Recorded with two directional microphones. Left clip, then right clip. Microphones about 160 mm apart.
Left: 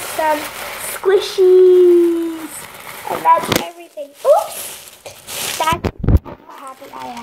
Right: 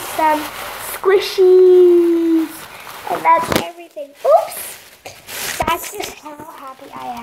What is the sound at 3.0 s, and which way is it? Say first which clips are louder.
Speech: even; 10° right (ahead or behind).